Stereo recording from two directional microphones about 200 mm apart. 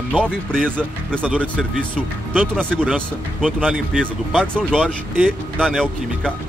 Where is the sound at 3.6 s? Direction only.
Centre (ahead or behind).